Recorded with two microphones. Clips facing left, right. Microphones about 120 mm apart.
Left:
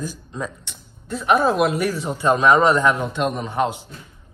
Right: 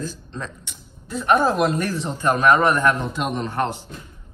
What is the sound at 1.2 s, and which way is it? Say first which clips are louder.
Speech: left 1 dB; centre (ahead or behind).